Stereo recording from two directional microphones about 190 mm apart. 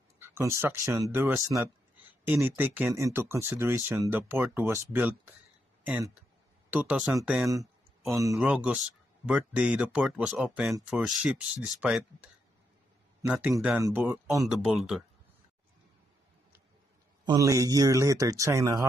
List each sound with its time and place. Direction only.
0.2 s speech: 15° right (ahead or behind)
8.1 s speech: 15° right (ahead or behind)
8.4 s speech: 5° right (ahead or behind)
13.3 s speech: 5° right (ahead or behind)
14.5 s speech: centre (ahead or behind)
17.2 s speech: 20° right (ahead or behind)